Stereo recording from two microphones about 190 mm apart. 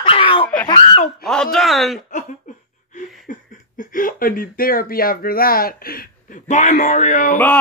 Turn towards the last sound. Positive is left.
turn(degrees=40)  # may be behind; listen again after turning